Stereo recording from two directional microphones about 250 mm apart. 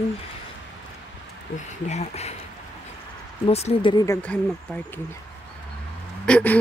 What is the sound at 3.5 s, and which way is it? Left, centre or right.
Speech, left.